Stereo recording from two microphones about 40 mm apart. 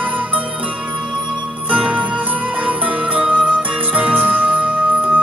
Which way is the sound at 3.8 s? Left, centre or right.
Right.